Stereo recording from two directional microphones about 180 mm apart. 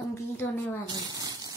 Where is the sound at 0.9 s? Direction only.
20° right (ahead or behind).